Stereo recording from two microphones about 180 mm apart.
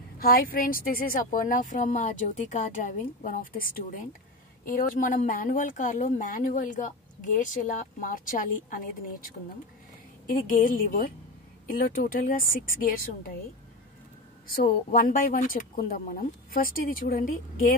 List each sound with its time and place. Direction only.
0.2 s speech: 55° left (ahead or behind)
14.5 s speech: 50° left (ahead or behind)